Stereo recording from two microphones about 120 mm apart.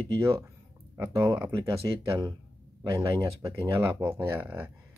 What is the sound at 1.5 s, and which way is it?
Speech, 30° right (ahead or behind).